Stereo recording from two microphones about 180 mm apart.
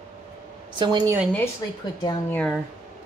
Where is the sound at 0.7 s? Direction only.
25° right (ahead or behind).